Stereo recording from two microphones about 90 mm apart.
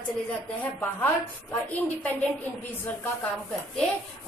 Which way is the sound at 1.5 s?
20° left (ahead or behind).